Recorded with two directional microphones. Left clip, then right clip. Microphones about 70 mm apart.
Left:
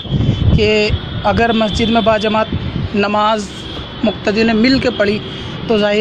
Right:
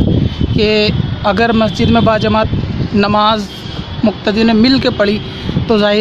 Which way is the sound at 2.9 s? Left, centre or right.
Right.